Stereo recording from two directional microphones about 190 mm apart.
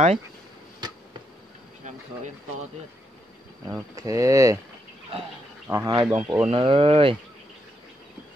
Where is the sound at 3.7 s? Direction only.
20° right (ahead or behind).